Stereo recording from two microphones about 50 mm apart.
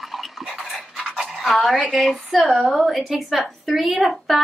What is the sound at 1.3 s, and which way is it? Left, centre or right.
Dog, centre.